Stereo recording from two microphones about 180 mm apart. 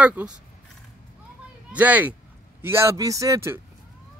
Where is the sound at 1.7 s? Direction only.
10° right (ahead or behind).